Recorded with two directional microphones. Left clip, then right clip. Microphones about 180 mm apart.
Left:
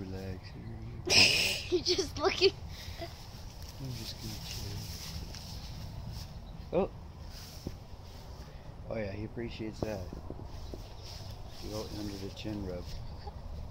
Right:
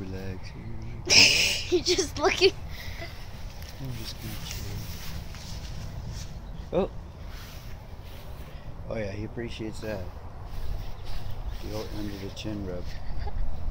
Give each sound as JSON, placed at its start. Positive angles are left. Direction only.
{"t": 1.0, "sound": "a sound", "side_deg": 45}
{"t": 1.7, "sound": "speech", "side_deg": -40}
{"t": 6.7, "sound": "speech", "side_deg": -10}
{"t": 8.9, "sound": "speech", "side_deg": -10}
{"t": 11.7, "sound": "speech", "side_deg": -10}